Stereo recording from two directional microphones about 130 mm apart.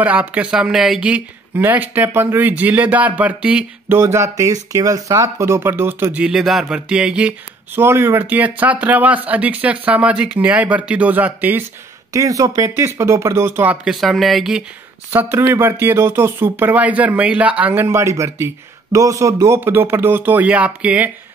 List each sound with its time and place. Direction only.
0.0 s speech: 10° right (ahead or behind)
4.0 s speech: 20° right (ahead or behind)
6.2 s speech: 5° right (ahead or behind)
12.1 s speech: 25° right (ahead or behind)
13.8 s speech: centre (ahead or behind)
15.0 s speech: 15° right (ahead or behind)
17.8 s speech: 25° right (ahead or behind)